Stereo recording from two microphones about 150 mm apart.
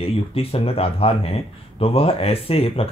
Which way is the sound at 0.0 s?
40° left (ahead or behind).